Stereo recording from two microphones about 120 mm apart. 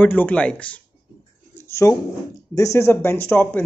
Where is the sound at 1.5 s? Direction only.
20° left (ahead or behind).